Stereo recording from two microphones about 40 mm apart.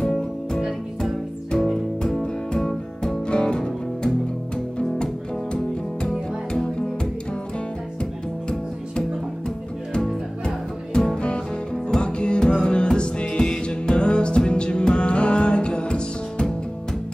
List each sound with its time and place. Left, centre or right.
0.0 s music: centre
0.6 s music: centre
2.0 s music: centre
3.3 s music: left
9.9 s music: left